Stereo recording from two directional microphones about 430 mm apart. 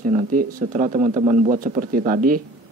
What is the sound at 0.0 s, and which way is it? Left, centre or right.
A man's voice, centre.